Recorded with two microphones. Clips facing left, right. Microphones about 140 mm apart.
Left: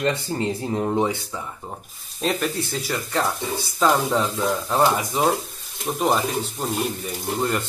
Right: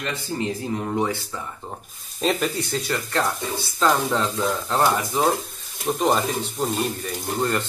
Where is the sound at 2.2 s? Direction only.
Centre (ahead or behind).